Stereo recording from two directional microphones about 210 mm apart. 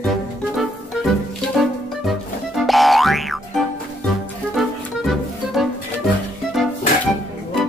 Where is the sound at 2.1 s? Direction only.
Centre (ahead or behind).